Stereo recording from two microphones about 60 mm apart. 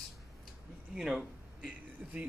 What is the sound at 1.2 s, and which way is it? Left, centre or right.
A man's voice, right.